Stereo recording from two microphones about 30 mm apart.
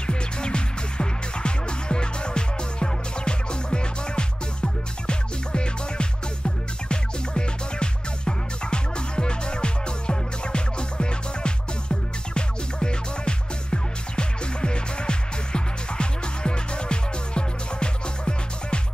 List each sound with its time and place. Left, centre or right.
0.0 s music: left